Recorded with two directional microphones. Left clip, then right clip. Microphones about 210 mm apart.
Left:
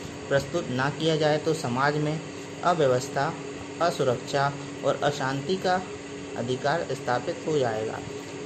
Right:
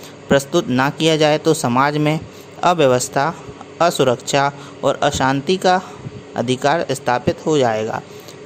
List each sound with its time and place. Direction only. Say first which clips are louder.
0.3 s a man's voice: right 10 dB; 40° right (ahead or behind)